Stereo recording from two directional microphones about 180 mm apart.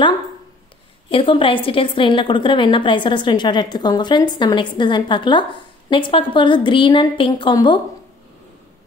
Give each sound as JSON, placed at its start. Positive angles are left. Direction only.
{"t": 1.1, "sound": "a woman's voice", "side_deg": 30}